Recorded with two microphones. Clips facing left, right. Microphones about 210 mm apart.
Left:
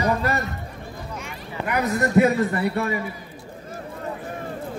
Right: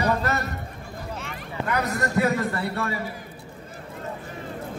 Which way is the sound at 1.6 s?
20° left (ahead or behind).